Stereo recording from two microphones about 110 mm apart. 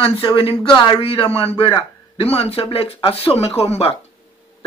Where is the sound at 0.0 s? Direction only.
50° left (ahead or behind); by 3.9 s 65° left (ahead or behind).